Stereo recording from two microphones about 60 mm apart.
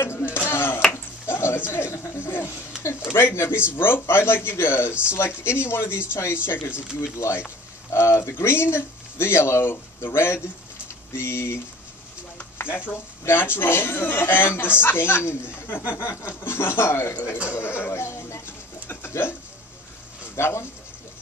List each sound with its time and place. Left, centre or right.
0.0 s a sound: left
1.7 s a man's voice: left
12.6 s stir: left
13.2 s a man's voice: left
17.6 s sheep: left
18.9 s bird: left
20.3 s speech: left